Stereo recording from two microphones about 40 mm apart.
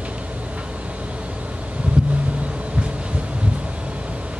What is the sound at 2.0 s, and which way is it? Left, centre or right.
Vehicle, right.